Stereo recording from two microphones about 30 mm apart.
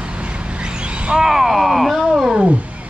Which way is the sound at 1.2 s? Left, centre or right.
Centre.